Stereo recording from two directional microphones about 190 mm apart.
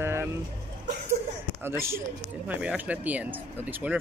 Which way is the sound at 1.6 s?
15° right (ahead or behind).